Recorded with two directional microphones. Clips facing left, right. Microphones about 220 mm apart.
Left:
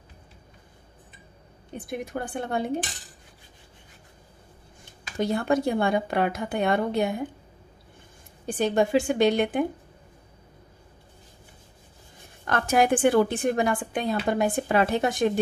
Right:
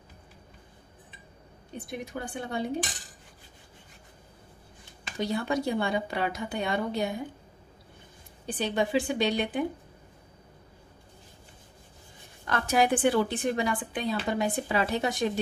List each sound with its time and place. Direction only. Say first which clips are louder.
1.9 s a woman's voice: left 5 dB; 55° left (ahead or behind)
5.2 s a woman's voice: left 5 dB; 50° left (ahead or behind)
8.5 s a woman's voice: left 5 dB; 45° left (ahead or behind)
12.4 s a woman's voice: left 3 dB; 50° left (ahead or behind)